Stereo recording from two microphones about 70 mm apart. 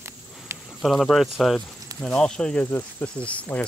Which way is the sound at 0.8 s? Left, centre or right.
Centre.